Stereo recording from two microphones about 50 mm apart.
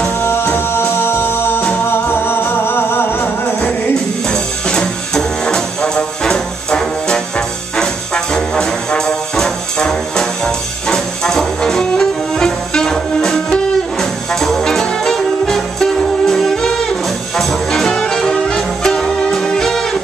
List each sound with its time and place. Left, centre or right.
0.2 s a capella: left
1.9 s music: left
4.3 s music: centre